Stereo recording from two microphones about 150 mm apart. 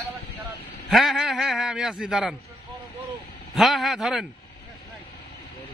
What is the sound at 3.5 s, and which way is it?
Speech, centre (ahead or behind).